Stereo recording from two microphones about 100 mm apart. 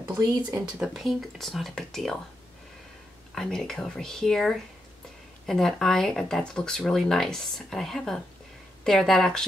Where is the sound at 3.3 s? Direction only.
5° left (ahead or behind).